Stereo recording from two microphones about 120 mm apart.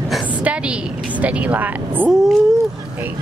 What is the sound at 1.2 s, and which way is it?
Speech, 10° right (ahead or behind).